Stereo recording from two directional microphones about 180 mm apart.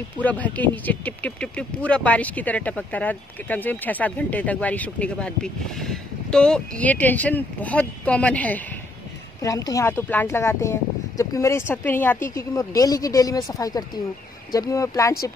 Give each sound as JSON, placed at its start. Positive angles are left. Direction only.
{"t": 0.2, "sound": "speech", "side_deg": 10}
{"t": 9.4, "sound": "speech", "side_deg": 20}